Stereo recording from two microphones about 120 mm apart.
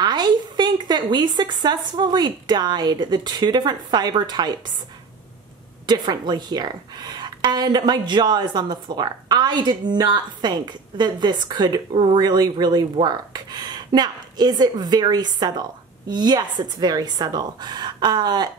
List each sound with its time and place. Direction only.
0.0 s a woman's voice: 35° right (ahead or behind)
5.9 s a woman's voice: 35° right (ahead or behind)